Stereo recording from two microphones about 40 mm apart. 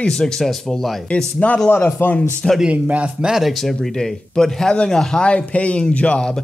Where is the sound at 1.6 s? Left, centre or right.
Left.